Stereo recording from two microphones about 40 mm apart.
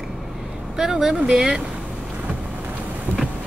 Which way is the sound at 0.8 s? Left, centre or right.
Centre.